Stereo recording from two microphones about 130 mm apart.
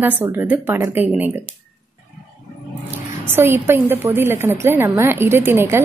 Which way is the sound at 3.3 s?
15° right (ahead or behind).